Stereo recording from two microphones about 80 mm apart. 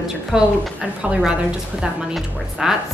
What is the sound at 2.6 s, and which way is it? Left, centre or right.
Speech, centre.